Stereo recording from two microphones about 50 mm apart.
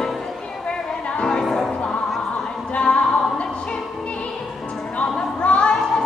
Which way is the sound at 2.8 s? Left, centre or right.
Left.